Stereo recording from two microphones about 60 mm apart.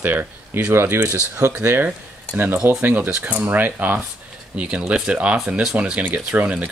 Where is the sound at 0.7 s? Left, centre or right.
Right.